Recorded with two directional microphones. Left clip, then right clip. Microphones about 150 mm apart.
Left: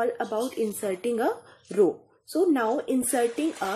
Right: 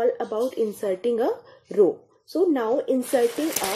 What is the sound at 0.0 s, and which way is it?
A woman's voice, 15° left (ahead or behind).